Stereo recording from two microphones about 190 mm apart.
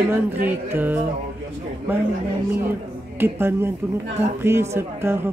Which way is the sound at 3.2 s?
10° right (ahead or behind).